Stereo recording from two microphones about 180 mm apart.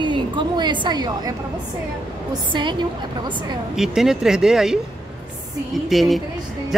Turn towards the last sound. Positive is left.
turn(degrees=0)  # may be behind; listen again after turning